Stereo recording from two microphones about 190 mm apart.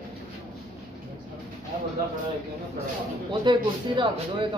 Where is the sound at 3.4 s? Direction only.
25° right (ahead or behind).